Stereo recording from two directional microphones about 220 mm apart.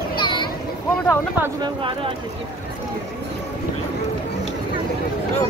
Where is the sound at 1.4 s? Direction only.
20° right (ahead or behind).